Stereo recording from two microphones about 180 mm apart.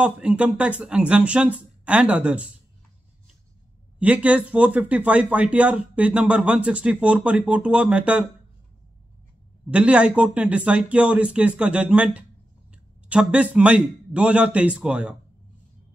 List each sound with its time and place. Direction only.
0.0 s speech: 5° right (ahead or behind)
4.0 s speech: 10° right (ahead or behind)
9.7 s speech: 5° right (ahead or behind)